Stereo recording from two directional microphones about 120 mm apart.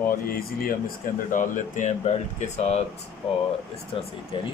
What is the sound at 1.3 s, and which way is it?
Speech, 90° left.